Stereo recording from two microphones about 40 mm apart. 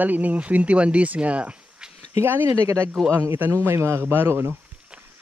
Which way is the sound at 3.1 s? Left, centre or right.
Right.